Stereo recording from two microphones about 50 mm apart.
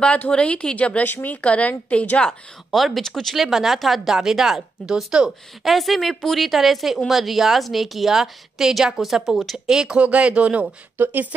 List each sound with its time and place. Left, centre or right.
0.3 s a woman's voice: left
2.7 s a woman's voice: centre
3.3 s a woman's voice: centre
5.6 s a woman's voice: centre
9.9 s speech: right
11.0 s speech: right